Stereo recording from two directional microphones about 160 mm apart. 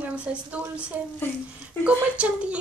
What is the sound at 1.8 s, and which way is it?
Speech, 5° right (ahead or behind).